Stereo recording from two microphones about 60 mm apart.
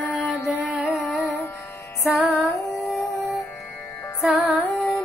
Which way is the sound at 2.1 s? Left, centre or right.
Centre.